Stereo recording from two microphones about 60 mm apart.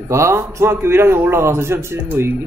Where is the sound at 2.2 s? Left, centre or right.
Right.